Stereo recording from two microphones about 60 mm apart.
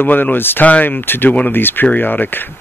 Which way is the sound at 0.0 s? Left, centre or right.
Left.